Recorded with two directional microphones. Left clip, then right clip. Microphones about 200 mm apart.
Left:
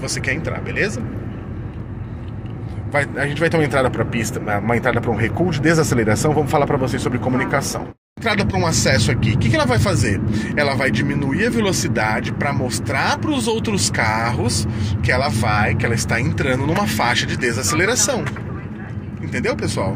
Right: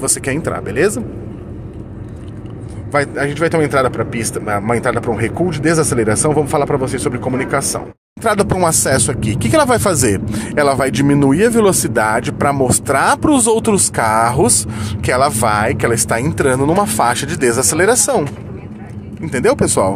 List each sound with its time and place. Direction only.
0.0 s speech: 35° right (ahead or behind)
2.9 s a man's voice: 20° right (ahead or behind)
8.2 s speech: 40° right (ahead or behind)
19.2 s speech: 50° right (ahead or behind)